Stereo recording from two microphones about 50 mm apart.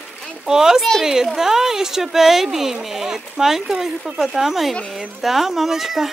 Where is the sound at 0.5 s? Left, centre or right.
Centre.